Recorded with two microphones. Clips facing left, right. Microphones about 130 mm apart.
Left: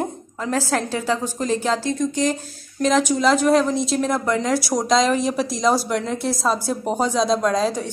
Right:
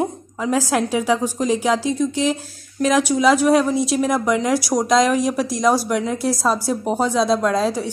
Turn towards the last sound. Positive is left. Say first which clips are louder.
# right 1 dB
turn(degrees=-5)  # may be behind; listen again after turning